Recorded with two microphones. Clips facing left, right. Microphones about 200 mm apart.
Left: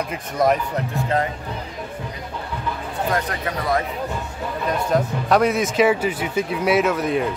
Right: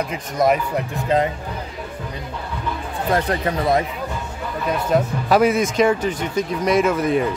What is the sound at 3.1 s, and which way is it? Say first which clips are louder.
Speech: right 6 dB; 30° right (ahead or behind).